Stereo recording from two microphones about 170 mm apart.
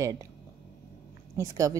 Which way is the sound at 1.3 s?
20° right (ahead or behind).